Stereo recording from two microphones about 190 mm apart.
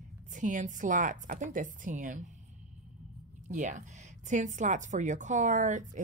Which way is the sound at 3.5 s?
40° right (ahead or behind).